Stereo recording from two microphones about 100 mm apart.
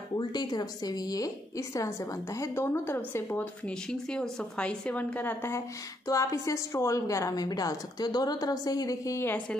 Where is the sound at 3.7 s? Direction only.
5° left (ahead or behind).